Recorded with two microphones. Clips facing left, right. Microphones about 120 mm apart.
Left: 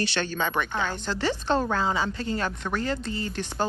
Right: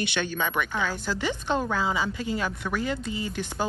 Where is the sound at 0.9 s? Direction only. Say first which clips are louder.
Left 1 dB; 10° right (ahead or behind).